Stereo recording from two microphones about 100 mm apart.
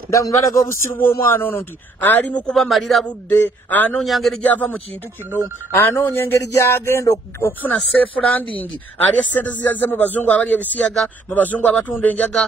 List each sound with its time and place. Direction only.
0.1 s a man's voice: 30° left (ahead or behind)
0.9 s speech: 20° left (ahead or behind)
2.5 s a man's voice: centre (ahead or behind)
3.3 s speech: 20° left (ahead or behind)
4.0 s a man's voice: centre (ahead or behind)
4.4 s speech: 15° left (ahead or behind)
5.8 s speech: 20° left (ahead or behind)
9.1 s speech: 15° left (ahead or behind)